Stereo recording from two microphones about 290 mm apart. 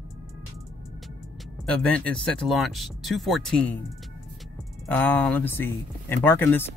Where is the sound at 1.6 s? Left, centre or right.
Centre.